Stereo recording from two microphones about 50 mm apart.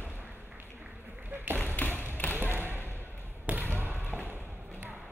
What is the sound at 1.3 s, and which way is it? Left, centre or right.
Tap, right.